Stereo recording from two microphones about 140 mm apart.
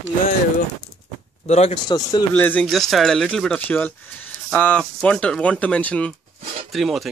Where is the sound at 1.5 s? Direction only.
50° left (ahead or behind).